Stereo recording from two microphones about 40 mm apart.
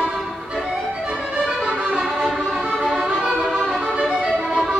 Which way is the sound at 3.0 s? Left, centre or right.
Centre.